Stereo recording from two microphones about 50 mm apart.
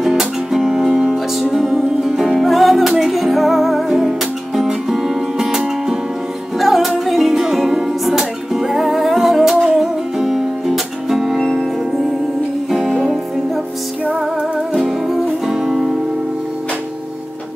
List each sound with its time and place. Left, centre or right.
0.0 s music: centre
6.6 s music: centre
14.7 s music: centre